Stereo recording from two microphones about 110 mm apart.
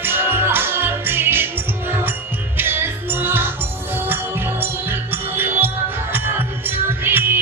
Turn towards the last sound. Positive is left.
turn(degrees=-20)  # may be behind; listen again after turning